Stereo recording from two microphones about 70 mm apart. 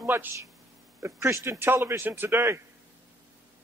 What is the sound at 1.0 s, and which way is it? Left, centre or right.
A man's voice, right.